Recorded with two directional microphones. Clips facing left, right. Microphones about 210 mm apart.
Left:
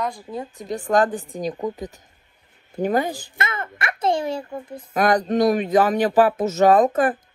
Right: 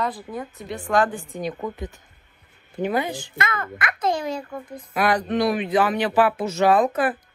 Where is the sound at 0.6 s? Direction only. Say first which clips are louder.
Left 2 dB; 40° left (ahead or behind).